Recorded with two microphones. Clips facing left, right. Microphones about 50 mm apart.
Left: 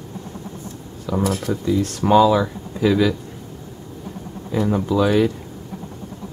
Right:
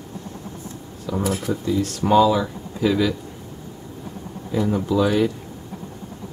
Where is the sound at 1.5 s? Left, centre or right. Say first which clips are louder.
Left 2 dB; centre.